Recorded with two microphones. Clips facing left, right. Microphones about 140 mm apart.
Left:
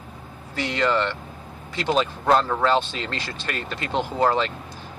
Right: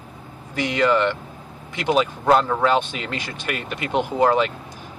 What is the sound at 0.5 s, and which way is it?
Speech, 15° right (ahead or behind).